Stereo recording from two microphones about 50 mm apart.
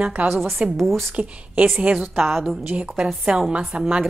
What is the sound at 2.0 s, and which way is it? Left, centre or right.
A woman's voice, centre.